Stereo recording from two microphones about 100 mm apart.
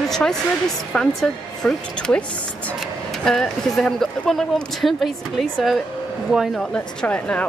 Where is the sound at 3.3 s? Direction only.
5° left (ahead or behind).